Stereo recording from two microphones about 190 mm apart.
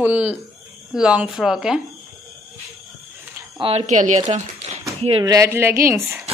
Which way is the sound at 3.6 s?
30° right (ahead or behind).